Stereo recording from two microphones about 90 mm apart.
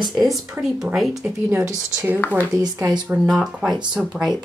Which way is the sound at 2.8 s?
45° right (ahead or behind).